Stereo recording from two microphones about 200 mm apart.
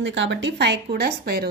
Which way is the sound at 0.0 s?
65° right (ahead or behind).